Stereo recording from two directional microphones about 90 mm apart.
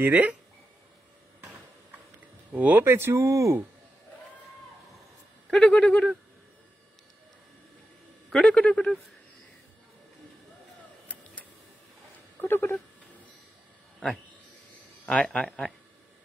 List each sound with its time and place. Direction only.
0.0 s speech: 15° right (ahead or behind)
2.5 s speech: 20° right (ahead or behind); by 3.6 s 35° right (ahead or behind)
5.5 s a man's voice: 10° left (ahead or behind)
8.3 s a man's voice: 5° left (ahead or behind)
12.4 s speech: 25° left (ahead or behind)
13.9 s a man's voice: centre (ahead or behind)
15.0 s a man's voice: 10° left (ahead or behind)